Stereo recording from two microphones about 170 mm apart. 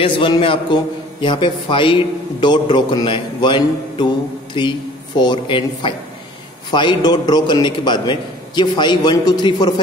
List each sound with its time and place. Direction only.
0.0 s a man's voice: 30° left (ahead or behind)